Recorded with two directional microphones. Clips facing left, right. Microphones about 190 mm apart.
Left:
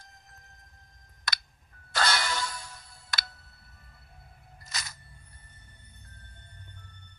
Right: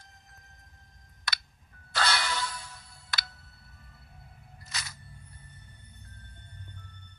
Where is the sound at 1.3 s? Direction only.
45° left (ahead or behind).